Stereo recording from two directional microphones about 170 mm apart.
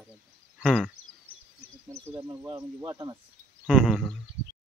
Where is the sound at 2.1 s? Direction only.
15° right (ahead or behind).